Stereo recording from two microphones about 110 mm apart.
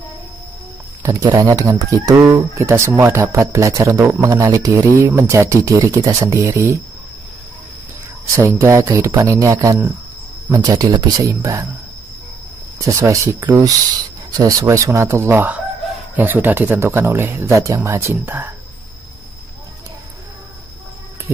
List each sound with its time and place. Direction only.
1.0 s speech: 30° right (ahead or behind)
8.4 s speech: 25° right (ahead or behind)
12.7 s speech: 25° right (ahead or behind)